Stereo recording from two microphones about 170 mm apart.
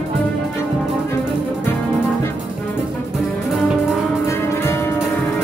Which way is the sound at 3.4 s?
5° right (ahead or behind).